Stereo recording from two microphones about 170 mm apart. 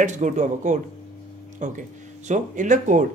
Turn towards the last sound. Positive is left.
turn(degrees=-45)  # may be behind; listen again after turning